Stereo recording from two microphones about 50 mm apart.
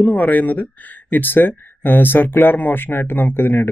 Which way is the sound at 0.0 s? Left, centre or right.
Left.